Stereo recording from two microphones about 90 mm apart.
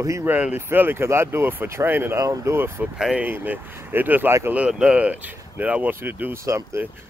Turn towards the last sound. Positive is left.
turn(degrees=-30)  # may be behind; listen again after turning